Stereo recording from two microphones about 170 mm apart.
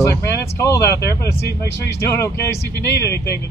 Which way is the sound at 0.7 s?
15° left (ahead or behind).